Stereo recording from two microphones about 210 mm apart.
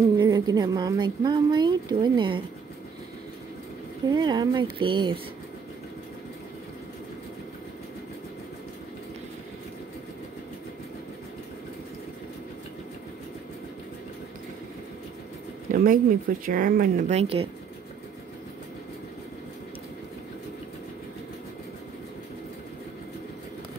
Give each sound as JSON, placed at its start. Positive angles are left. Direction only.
{"t": 0.2, "sound": "speech", "side_deg": -20}
{"t": 4.1, "sound": "speech", "side_deg": -20}
{"t": 15.7, "sound": "speech", "side_deg": -40}
{"t": 17.1, "sound": "speech", "side_deg": -30}